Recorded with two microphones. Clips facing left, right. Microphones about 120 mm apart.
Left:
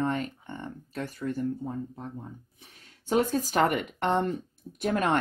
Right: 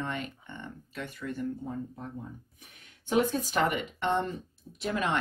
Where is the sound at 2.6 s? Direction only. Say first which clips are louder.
Left 1 dB; 40° left (ahead or behind).